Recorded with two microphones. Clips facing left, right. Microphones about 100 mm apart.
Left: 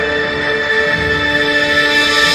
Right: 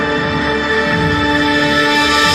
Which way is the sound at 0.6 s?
40° right (ahead or behind).